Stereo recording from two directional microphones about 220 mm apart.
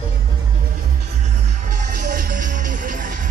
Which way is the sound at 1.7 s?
35° right (ahead or behind).